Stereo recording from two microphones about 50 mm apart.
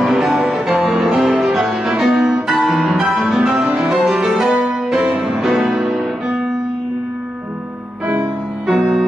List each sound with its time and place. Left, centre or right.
0.0 s music: centre
8.6 s music: centre